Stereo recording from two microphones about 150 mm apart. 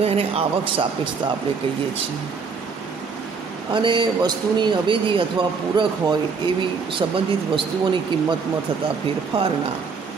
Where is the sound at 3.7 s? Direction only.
30° right (ahead or behind).